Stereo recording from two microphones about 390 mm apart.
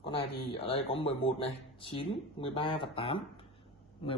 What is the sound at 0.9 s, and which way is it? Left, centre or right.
A woman's voice, centre.